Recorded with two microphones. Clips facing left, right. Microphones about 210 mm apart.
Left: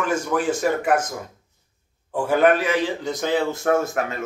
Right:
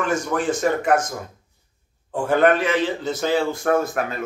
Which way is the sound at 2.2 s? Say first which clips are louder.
Even; 10° left (ahead or behind).